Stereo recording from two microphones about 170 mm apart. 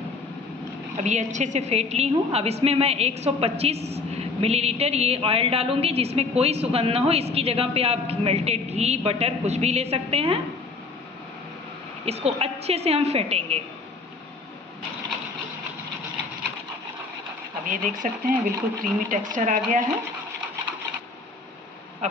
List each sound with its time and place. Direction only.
0.9 s a woman's voice: 45° right (ahead or behind)
12.0 s a woman's voice: 35° right (ahead or behind)
17.6 s speech: 50° right (ahead or behind)